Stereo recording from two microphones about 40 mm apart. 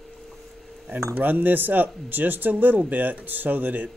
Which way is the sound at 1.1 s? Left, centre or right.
Right.